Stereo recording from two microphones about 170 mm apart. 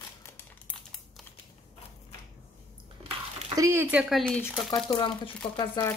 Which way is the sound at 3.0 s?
30° right (ahead or behind).